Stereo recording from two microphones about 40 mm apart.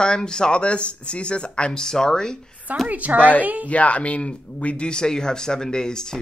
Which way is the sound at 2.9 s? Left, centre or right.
Right.